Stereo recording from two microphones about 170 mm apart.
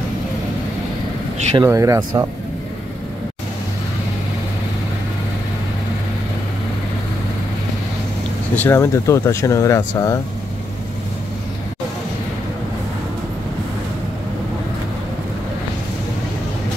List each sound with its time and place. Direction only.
1.6 s speech: 20° right (ahead or behind)
8.5 s speech: 15° left (ahead or behind)